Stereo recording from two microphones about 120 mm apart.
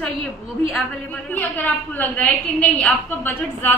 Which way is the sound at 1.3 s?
15° left (ahead or behind).